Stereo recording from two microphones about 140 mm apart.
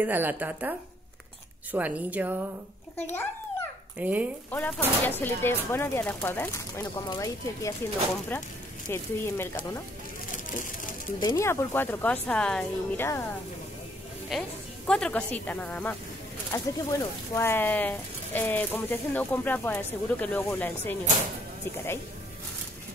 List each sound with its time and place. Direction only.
0.0 s a woman's voice: 10° right (ahead or behind)
3.0 s speech: 15° left (ahead or behind)
4.0 s a woman's voice: 10° right (ahead or behind)
4.5 s speech: 15° left (ahead or behind)
8.3 s speech: 15° left (ahead or behind)
10.3 s a sound: 70° left (ahead or behind)
11.1 s speech: 30° left (ahead or behind)
11.4 s speech: 15° left (ahead or behind)
13.0 s speech: 20° left (ahead or behind)
14.3 s a woman's voice: centre (ahead or behind)
16.5 s speech: 25° left (ahead or behind)